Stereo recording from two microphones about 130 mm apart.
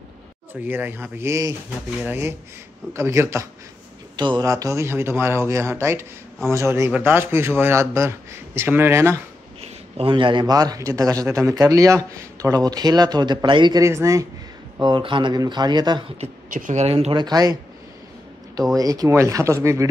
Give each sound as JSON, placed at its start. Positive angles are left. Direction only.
{"t": 0.6, "sound": "a man's voice", "side_deg": -15}
{"t": 9.6, "sound": "a man's voice", "side_deg": -45}
{"t": 13.8, "sound": "a man's voice", "side_deg": -25}
{"t": 14.8, "sound": "speech", "side_deg": -35}
{"t": 16.4, "sound": "speech", "side_deg": -85}
{"t": 17.1, "sound": "speech", "side_deg": -35}
{"t": 18.8, "sound": "a man's voice", "side_deg": -25}